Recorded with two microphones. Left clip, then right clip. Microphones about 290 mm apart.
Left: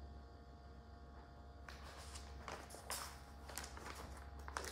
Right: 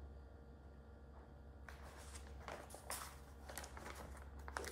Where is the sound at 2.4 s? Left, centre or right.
Centre.